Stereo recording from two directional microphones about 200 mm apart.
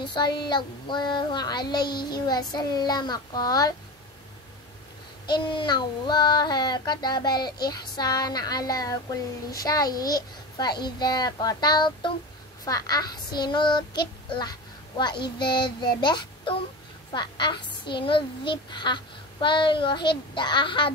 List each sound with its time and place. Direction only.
0.0 s a woman's voice: 25° left (ahead or behind)
5.2 s a woman's voice: 25° left (ahead or behind)